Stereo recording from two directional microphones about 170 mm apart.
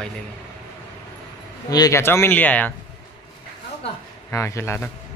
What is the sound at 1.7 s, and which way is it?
Speech, 20° left (ahead or behind).